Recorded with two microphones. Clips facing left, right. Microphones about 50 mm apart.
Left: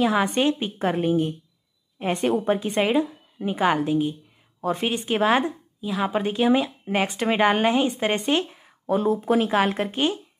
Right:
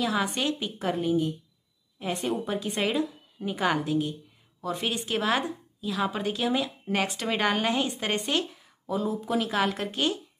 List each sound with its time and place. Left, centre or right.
0.0 s a woman's voice: left
4.6 s a woman's voice: left
8.8 s a woman's voice: left